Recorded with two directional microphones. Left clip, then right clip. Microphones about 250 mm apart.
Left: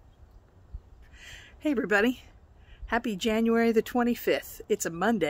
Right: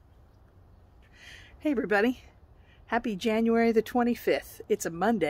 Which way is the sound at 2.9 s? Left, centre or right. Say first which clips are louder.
Even; centre.